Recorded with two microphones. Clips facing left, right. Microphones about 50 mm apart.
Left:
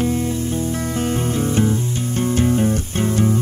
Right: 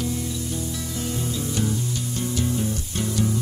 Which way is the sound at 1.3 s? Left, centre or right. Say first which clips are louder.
Left 8 dB; left.